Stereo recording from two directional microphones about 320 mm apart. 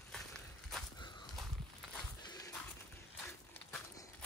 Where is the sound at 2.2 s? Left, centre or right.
Centre.